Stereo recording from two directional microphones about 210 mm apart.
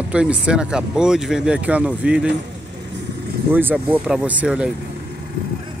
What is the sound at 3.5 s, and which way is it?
Speech, 10° right (ahead or behind).